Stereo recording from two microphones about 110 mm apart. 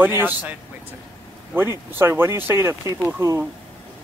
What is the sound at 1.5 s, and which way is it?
Speech, 20° right (ahead or behind).